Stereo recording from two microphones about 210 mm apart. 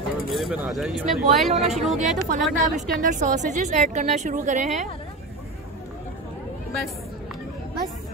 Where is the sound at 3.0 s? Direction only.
35° right (ahead or behind).